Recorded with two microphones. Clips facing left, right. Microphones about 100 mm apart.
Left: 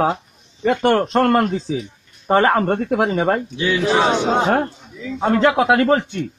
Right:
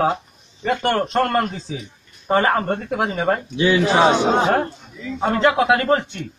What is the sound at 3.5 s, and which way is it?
Speech, 20° right (ahead or behind).